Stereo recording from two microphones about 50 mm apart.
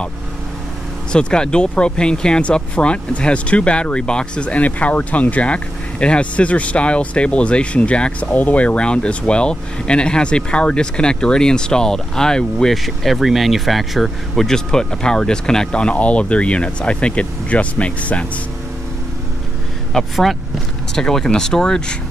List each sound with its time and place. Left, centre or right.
1.1 s speech: centre
12.7 s speech: centre
14.5 s speech: centre
19.9 s speech: centre